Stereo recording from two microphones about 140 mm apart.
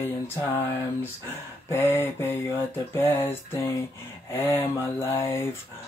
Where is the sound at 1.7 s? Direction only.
15° left (ahead or behind).